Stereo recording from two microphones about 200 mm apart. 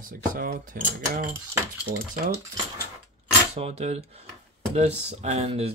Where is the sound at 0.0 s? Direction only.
45° right (ahead or behind).